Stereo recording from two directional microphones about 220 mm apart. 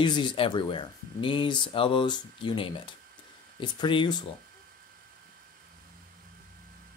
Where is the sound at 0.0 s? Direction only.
20° left (ahead or behind).